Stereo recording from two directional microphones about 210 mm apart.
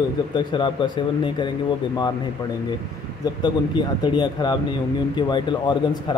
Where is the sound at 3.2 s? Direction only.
20° left (ahead or behind).